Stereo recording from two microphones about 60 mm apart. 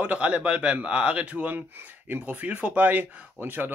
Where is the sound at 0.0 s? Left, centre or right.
Right.